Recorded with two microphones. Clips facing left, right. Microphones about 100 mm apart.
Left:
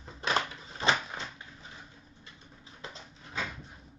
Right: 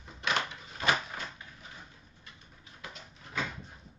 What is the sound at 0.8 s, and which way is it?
Cupboard open or close, 25° left (ahead or behind).